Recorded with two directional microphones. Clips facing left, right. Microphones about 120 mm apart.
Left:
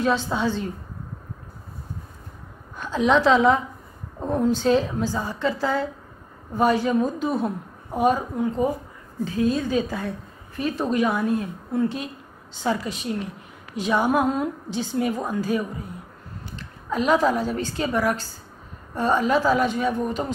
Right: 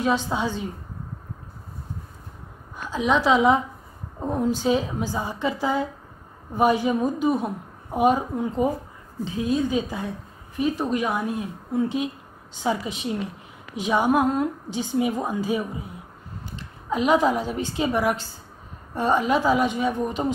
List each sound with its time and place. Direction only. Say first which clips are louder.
0.0 s a woman's voice: left 1 dB; 10° right (ahead or behind)
2.8 s a woman's voice: left 3 dB; 5° right (ahead or behind)
12.6 s a woman's voice: even; 20° right (ahead or behind)
13.7 s a woman's voice: even; 10° right (ahead or behind)